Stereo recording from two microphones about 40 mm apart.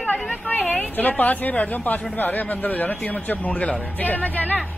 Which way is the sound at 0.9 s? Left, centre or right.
Left.